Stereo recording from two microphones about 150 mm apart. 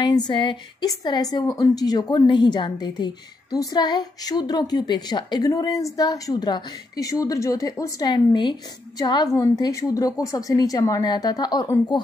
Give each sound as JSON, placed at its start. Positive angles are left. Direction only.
{"t": 0.0, "sound": "a woman's voice", "side_deg": 30}